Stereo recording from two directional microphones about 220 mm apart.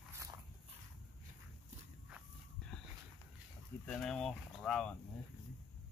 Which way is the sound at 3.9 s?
Centre (ahead or behind).